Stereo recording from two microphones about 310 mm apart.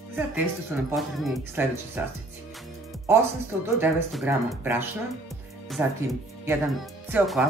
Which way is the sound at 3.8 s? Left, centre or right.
Centre.